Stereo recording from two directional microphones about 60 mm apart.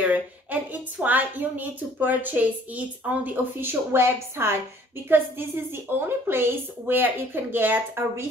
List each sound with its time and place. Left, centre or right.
0.0 s a woman's voice: right
3.3 s a woman's voice: right